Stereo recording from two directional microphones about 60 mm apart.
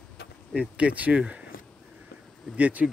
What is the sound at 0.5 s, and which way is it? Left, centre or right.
Speech, right.